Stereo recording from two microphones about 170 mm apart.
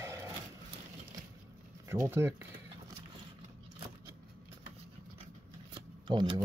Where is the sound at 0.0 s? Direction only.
15° right (ahead or behind).